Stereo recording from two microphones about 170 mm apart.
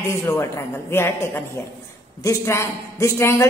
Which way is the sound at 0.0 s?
15° left (ahead or behind).